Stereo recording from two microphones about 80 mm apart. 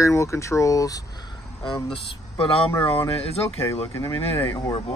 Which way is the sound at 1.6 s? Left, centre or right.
Left.